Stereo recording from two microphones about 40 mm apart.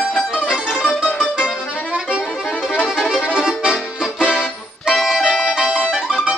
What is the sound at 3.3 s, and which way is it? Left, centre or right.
Accordion, right.